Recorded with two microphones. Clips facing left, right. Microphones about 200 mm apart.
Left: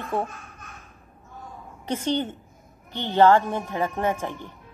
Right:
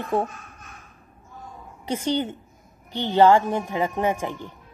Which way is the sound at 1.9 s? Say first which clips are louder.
Right 1 dB; 10° right (ahead or behind).